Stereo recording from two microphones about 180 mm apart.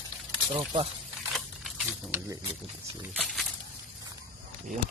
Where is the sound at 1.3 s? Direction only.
Centre (ahead or behind).